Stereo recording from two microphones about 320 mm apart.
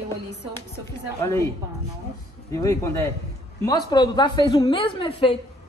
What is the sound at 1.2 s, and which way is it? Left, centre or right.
Speech, centre.